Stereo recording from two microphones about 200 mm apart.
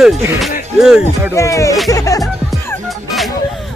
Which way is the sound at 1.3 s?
15° left (ahead or behind).